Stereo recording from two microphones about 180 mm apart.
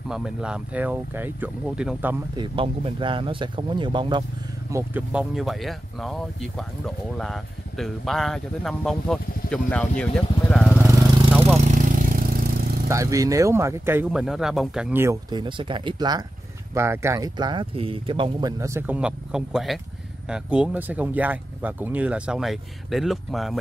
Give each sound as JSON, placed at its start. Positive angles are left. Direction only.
{"t": 0.1, "sound": "speech", "side_deg": -5}
{"t": 2.3, "sound": "speech", "side_deg": -25}
{"t": 4.6, "sound": "speech", "side_deg": -15}
{"t": 5.1, "sound": "speech", "side_deg": 0}
{"t": 11.6, "sound": "a sound", "side_deg": -45}
{"t": 12.8, "sound": "speech", "side_deg": -15}
{"t": 14.2, "sound": "speech", "side_deg": 0}
{"t": 15.2, "sound": "speech", "side_deg": -25}
{"t": 18.6, "sound": "speech", "side_deg": -15}